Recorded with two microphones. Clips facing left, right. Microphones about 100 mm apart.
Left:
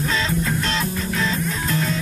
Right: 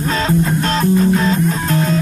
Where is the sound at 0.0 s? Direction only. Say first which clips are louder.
Right 6 dB; 35° right (ahead or behind).